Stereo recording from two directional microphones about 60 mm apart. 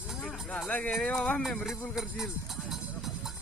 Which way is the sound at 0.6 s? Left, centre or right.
Left.